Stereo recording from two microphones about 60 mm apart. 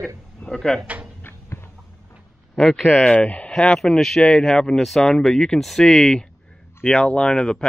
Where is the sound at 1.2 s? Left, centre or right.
Left.